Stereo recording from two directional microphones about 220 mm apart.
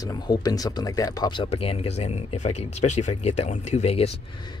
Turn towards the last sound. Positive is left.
turn(degrees=30)  # may be behind; listen again after turning